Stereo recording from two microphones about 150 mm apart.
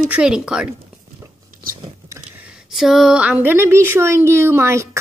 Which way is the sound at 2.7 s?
Centre (ahead or behind).